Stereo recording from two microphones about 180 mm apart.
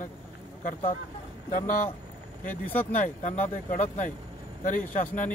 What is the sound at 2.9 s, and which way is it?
A man's voice, 45° left (ahead or behind).